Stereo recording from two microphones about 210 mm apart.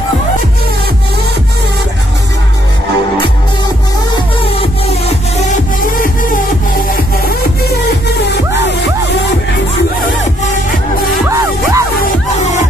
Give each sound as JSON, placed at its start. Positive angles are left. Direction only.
{"t": 4.6, "sound": "music", "side_deg": 30}
{"t": 11.2, "sound": "music", "side_deg": -15}